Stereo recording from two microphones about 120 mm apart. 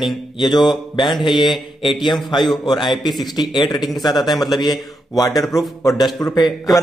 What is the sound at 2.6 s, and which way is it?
Mantra, 40° left (ahead or behind).